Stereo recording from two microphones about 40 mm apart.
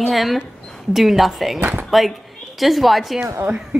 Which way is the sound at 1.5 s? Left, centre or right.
Right.